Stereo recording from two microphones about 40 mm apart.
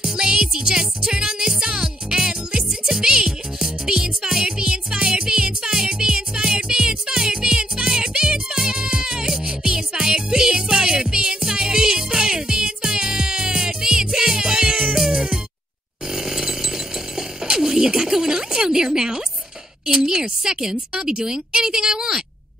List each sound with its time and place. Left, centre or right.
0.0 s music: centre
15.0 s cat: centre
16.1 s chainsaw: centre
19.9 s a sound: centre
21.0 s speech: centre